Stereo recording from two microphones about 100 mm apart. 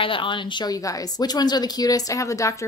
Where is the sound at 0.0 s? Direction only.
60° left (ahead or behind).